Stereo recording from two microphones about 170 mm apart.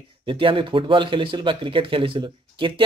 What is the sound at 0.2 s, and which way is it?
Speech, 30° right (ahead or behind).